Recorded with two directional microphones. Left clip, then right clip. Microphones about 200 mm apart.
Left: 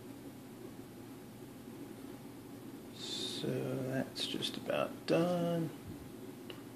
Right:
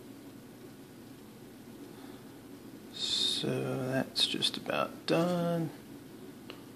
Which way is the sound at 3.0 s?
20° right (ahead or behind).